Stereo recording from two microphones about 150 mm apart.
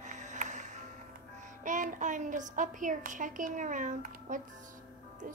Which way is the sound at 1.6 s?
60° right (ahead or behind).